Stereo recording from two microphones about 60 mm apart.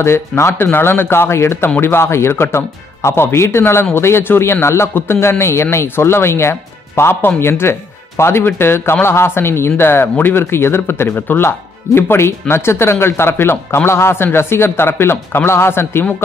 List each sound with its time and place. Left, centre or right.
0.0 s speech: left
0.7 s speech: left